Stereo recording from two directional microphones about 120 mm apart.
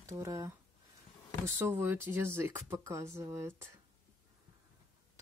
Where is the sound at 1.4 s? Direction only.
20° right (ahead or behind).